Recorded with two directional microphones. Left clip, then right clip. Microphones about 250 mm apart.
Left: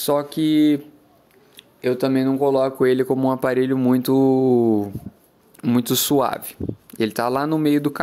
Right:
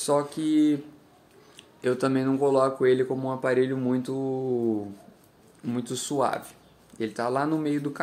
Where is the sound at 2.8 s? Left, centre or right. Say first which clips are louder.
Left 5 dB; left.